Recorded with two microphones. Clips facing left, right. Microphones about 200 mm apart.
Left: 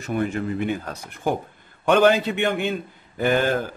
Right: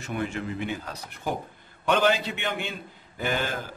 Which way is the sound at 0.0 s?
40° left (ahead or behind).